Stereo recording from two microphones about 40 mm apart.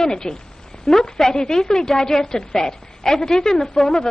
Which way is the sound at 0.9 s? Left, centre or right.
Centre.